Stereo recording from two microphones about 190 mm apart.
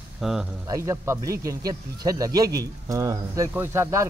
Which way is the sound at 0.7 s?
15° right (ahead or behind).